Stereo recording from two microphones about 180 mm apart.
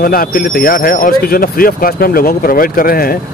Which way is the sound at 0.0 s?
55° left (ahead or behind).